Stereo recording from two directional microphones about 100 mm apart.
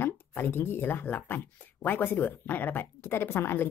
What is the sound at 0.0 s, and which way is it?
Speech, 20° left (ahead or behind).